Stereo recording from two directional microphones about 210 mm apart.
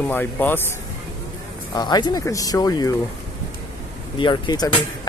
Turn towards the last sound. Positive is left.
turn(degrees=20)  # may be behind; listen again after turning